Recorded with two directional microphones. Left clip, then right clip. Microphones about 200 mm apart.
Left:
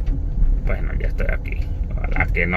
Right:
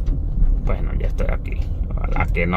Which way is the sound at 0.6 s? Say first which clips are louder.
Even; 20° right (ahead or behind).